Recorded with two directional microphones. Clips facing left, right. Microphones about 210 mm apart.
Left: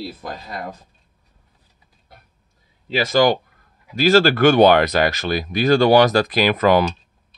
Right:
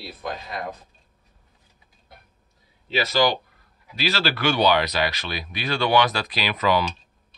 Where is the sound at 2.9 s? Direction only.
50° left (ahead or behind).